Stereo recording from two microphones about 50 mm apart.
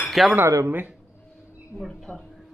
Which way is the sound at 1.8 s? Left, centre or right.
Centre.